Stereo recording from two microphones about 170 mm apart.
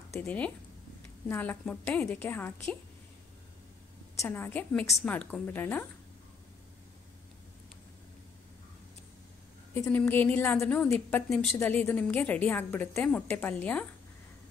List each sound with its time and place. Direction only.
0.1 s a woman's voice: 10° left (ahead or behind)
4.2 s a woman's voice: 10° left (ahead or behind)
9.8 s a woman's voice: 10° left (ahead or behind)
11.5 s a woman's voice: 15° left (ahead or behind)